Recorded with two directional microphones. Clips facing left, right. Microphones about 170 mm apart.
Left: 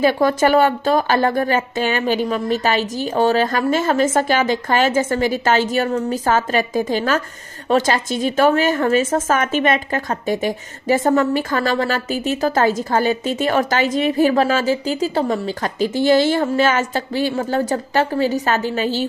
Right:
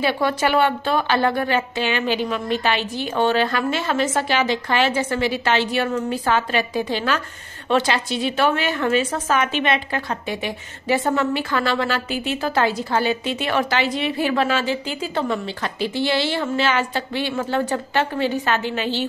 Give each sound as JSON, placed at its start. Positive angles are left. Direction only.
{"t": 0.0, "sound": "a woman's voice", "side_deg": 45}